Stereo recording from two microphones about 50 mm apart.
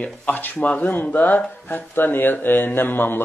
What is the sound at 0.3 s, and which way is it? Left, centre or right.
Speech, left.